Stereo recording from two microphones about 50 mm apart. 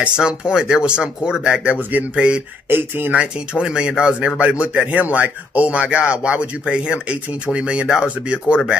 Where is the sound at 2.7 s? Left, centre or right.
Right.